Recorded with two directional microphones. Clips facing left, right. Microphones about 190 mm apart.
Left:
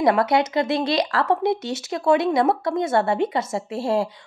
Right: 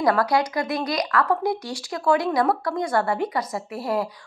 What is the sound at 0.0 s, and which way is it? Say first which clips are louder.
A woman's voice: left 2 dB; 25° left (ahead or behind).